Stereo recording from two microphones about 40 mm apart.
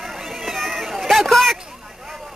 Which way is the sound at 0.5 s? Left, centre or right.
Centre.